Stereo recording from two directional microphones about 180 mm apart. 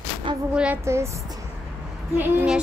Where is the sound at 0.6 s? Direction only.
10° right (ahead or behind).